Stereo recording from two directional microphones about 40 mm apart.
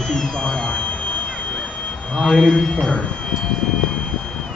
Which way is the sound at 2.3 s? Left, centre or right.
Centre.